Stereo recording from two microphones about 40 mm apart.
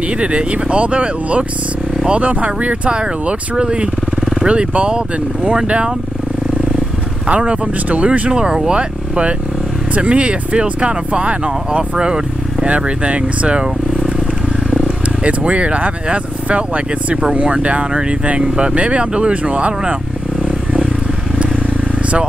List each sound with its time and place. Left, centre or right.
0.2 s speech: right
3.0 s speech: right
7.2 s speech: right
8.3 s speech: right
15.2 s speech: right